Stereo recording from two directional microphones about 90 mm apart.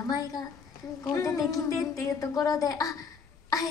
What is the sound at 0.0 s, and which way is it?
A woman's voice, 45° left (ahead or behind).